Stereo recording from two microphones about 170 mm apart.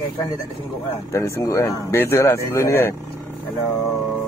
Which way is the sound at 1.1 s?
15° left (ahead or behind).